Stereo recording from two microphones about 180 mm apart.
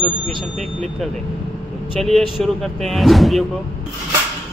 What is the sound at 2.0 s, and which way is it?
A man's voice, centre (ahead or behind).